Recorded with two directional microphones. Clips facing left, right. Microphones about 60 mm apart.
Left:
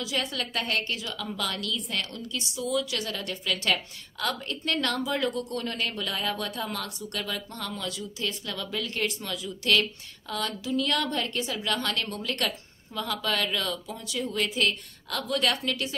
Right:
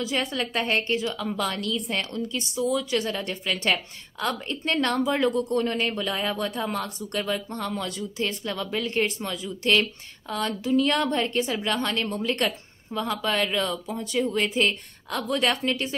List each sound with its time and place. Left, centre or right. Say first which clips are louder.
0.0 s a woman's voice: right 4 dB; right